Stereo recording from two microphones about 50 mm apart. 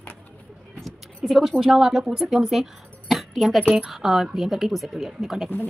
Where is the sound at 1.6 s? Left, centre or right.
Centre.